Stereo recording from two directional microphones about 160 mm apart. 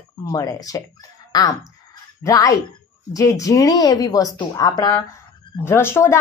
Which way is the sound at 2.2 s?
20° left (ahead or behind).